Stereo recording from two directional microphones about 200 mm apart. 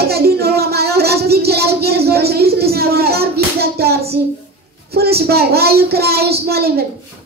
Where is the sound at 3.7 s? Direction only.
50° right (ahead or behind).